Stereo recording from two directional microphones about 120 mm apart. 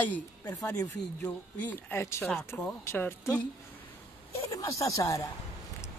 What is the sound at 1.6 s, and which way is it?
A woman's voice, 15° left (ahead or behind).